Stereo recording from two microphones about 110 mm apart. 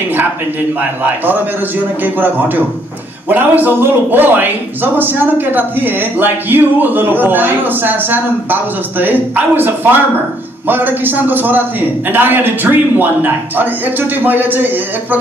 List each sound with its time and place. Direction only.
1.0 s a man's voice: 15° right (ahead or behind)